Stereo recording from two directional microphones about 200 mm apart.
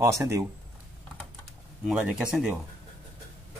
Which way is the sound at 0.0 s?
15° right (ahead or behind).